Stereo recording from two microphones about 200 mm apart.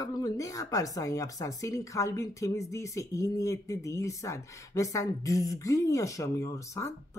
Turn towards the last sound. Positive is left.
turn(degrees=15)  # may be behind; listen again after turning